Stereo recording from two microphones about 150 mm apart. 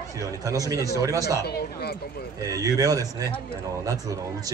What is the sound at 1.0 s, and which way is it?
Speech, 20° right (ahead or behind).